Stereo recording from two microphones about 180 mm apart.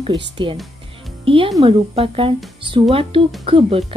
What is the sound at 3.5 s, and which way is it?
Speech, 30° right (ahead or behind).